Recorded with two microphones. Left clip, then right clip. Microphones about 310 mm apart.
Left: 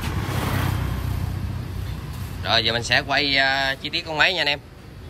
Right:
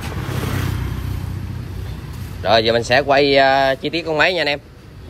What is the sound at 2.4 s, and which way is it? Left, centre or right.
Speech, centre.